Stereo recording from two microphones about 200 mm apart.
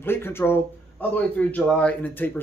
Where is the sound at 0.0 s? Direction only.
10° left (ahead or behind).